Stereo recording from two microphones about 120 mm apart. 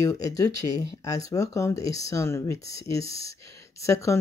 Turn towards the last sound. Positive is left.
turn(degrees=25)  # may be behind; listen again after turning